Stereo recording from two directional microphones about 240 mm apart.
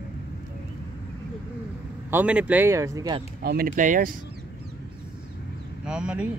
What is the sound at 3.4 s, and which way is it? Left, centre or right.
Speech, right.